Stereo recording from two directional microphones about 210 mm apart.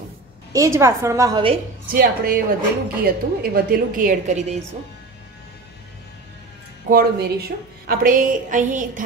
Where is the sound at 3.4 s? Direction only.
45° right (ahead or behind).